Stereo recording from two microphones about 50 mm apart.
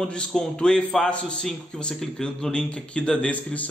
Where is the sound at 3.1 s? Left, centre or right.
Left.